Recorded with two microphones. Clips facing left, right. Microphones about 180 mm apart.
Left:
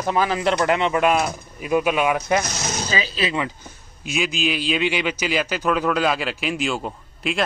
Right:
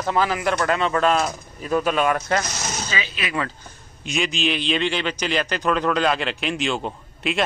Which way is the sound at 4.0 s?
Centre (ahead or behind).